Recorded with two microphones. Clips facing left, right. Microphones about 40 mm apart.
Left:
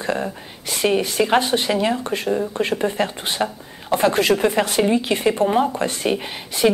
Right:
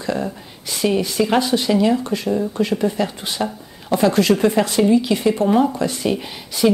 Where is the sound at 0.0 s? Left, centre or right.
Left.